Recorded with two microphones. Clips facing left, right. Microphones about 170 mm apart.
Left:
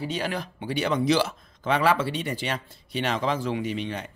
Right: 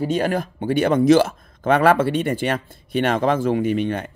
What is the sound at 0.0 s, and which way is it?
Speech, 50° right (ahead or behind).